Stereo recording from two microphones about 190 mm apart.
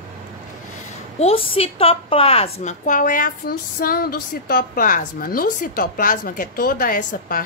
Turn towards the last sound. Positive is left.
turn(degrees=45)  # may be behind; listen again after turning